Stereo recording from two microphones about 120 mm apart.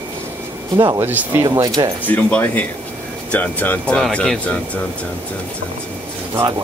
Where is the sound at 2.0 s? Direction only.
15° left (ahead or behind).